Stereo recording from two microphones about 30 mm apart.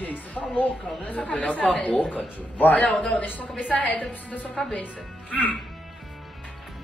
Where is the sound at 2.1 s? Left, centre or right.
Left.